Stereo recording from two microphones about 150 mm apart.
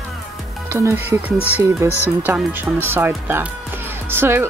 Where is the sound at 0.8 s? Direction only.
15° right (ahead or behind).